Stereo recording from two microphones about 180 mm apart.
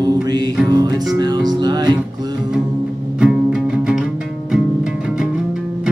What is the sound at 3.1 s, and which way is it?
Music, 5° right (ahead or behind).